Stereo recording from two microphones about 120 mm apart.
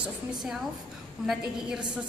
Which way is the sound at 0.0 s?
5° right (ahead or behind).